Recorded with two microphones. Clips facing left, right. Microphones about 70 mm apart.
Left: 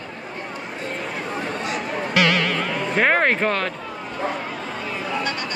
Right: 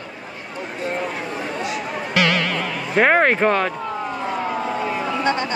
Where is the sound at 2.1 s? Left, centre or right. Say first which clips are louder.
Even; centre.